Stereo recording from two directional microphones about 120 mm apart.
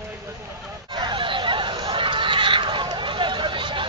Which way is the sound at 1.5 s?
45° right (ahead or behind).